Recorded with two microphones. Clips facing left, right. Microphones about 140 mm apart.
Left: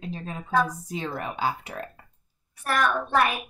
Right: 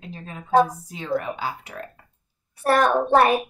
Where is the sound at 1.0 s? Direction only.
20° left (ahead or behind).